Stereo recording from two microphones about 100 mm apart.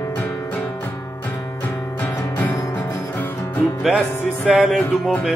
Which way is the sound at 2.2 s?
20° left (ahead or behind).